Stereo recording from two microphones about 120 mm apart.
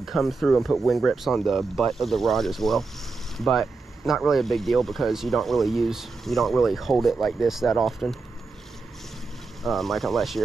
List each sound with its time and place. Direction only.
0.0 s speech: centre (ahead or behind)
9.6 s speech: centre (ahead or behind)